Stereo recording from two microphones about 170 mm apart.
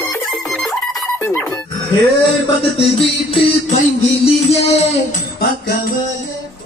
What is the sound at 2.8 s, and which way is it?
Music, 35° left (ahead or behind).